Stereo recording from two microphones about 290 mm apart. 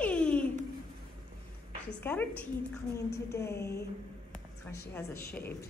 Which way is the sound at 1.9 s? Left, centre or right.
Centre.